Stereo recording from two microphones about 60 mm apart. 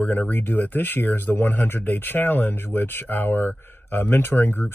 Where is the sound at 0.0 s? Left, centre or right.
Left.